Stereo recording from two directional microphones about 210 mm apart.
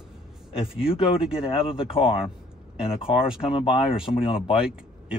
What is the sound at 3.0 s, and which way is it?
Speech, 5° right (ahead or behind).